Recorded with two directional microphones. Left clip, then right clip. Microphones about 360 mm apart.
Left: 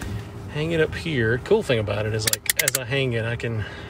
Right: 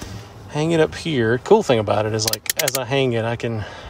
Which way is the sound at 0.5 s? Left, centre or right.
Centre.